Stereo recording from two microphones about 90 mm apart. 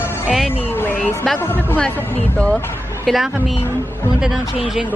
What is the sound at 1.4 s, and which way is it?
Speech, 25° left (ahead or behind).